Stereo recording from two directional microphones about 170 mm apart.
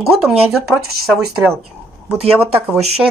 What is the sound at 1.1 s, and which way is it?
Speech, centre (ahead or behind).